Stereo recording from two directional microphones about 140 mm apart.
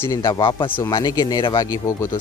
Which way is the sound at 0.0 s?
20° left (ahead or behind).